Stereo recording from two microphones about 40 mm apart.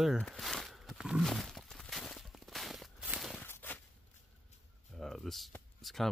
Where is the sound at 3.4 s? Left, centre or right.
Left.